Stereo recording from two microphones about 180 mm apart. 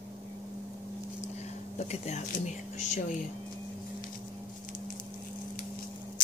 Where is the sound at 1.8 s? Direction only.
35° left (ahead or behind).